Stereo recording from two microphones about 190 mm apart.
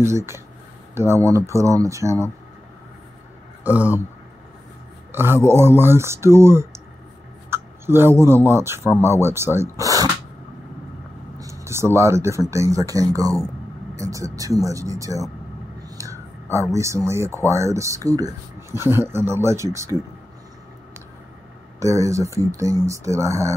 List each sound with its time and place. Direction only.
0.0 s speech: 15° right (ahead or behind)
3.6 s speech: 10° right (ahead or behind)
5.1 s speech: 10° right (ahead or behind)
7.4 s a sound: 10° right (ahead or behind)
8.5 s speech: 15° right (ahead or behind)
11.3 s speech: 15° right (ahead or behind)
16.0 s a sound: 15° right (ahead or behind)
16.7 s speech: 15° right (ahead or behind)
21.7 s speech: 15° right (ahead or behind)